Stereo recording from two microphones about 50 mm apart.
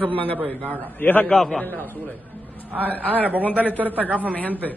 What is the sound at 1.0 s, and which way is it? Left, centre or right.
Speech, left.